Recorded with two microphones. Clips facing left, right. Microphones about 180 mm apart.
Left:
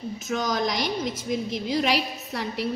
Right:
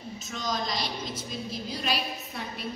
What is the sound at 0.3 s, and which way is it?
Speech, 70° left (ahead or behind).